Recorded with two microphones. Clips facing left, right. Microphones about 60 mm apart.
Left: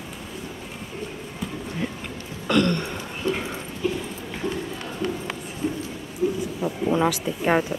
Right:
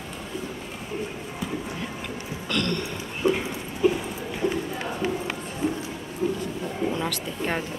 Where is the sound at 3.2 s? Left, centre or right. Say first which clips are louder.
Right 3 dB; centre.